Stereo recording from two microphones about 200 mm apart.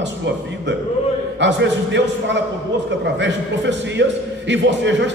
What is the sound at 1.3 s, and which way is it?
A man's voice, 60° right (ahead or behind).